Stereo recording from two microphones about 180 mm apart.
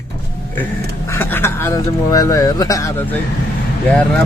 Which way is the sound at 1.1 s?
15° left (ahead or behind).